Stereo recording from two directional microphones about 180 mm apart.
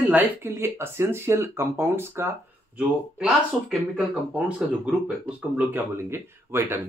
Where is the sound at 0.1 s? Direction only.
10° right (ahead or behind).